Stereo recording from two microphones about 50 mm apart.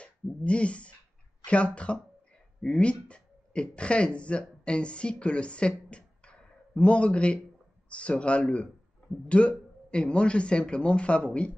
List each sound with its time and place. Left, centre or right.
0.0 s speech: left